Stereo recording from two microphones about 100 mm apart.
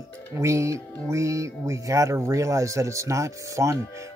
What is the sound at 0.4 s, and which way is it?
Speech, 30° right (ahead or behind).